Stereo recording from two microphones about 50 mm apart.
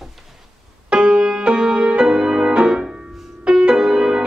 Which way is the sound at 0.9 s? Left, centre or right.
Centre.